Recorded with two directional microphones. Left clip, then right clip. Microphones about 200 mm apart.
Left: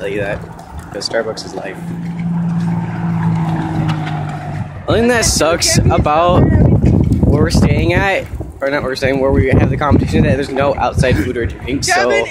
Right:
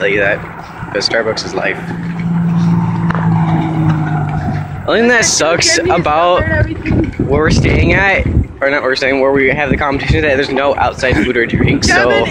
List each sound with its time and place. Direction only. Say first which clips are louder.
0.0 s speech: right 7 dB; 5° left (ahead or behind)
4.8 s speech: right 3 dB; 5° left (ahead or behind)
11.9 s speech: right 1 dB; 35° right (ahead or behind)